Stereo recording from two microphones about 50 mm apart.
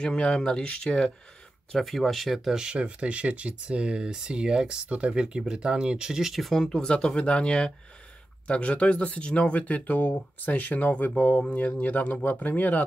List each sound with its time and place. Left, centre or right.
0.0 s speech: centre
1.7 s speech: centre
2.5 s speech: centre; by 12.8 s left